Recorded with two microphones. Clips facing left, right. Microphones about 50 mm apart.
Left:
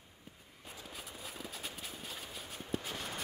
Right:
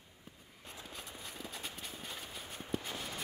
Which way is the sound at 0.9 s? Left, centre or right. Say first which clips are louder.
Left 1 dB; centre.